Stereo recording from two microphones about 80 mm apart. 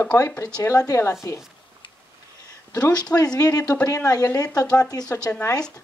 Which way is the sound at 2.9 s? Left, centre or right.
Left.